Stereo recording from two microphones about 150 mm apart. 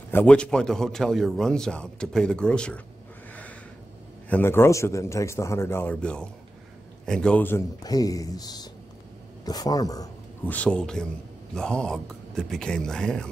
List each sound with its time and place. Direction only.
0.1 s a man's voice: 10° left (ahead or behind)
4.3 s a man's voice: 15° left (ahead or behind)
7.8 s speech: 25° left (ahead or behind)
10.4 s a man's voice: 10° left (ahead or behind)